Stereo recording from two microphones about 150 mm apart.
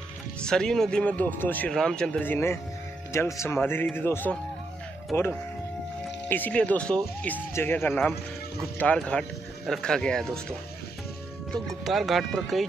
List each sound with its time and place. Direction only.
0.4 s a man's voice: 5° left (ahead or behind)
11.5 s speech: centre (ahead or behind)